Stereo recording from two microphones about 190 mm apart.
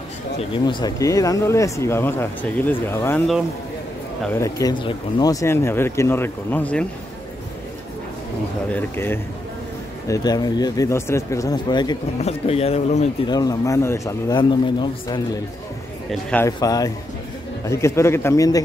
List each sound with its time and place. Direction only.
0.4 s speech: 25° left (ahead or behind)
4.2 s speech: 15° left (ahead or behind)
8.6 s speech: 10° left (ahead or behind)
12.2 s speech: 35° left (ahead or behind)
13.3 s a man's voice: 20° left (ahead or behind)
16.1 s a man's voice: 5° left (ahead or behind)
16.4 s a man's voice: 20° left (ahead or behind)